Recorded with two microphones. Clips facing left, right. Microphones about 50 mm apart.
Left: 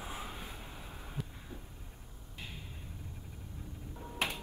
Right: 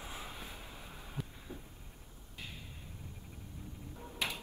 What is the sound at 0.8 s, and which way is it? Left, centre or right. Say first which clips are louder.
Heart sounds: left 2 dB; centre.